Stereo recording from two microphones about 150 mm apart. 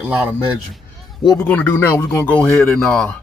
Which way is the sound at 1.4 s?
15° left (ahead or behind).